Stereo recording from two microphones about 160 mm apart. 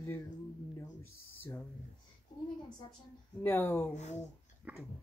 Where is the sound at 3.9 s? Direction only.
45° left (ahead or behind).